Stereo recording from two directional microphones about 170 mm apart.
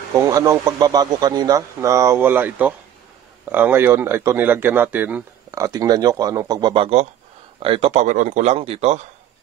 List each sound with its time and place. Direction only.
0.3 s a man's voice: 20° right (ahead or behind); by 9.0 s 35° right (ahead or behind)